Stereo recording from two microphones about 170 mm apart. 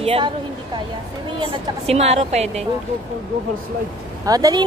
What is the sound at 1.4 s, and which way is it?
A woman's voice, 35° right (ahead or behind).